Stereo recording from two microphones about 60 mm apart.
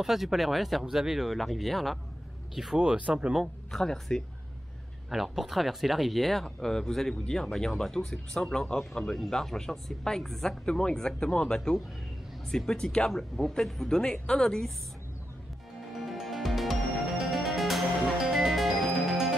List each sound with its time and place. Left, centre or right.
0.0 s speech: centre
2.8 s speech: centre
3.7 s speech: centre
5.1 s speech: centre
10.6 s speech: centre
15.9 s music: centre